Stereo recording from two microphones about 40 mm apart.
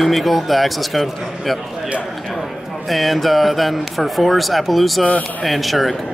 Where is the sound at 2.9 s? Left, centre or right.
Centre.